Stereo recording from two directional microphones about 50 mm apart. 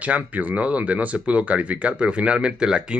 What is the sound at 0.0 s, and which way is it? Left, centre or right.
Speech, right.